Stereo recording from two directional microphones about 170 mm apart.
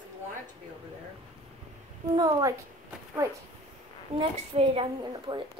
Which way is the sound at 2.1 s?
20° right (ahead or behind).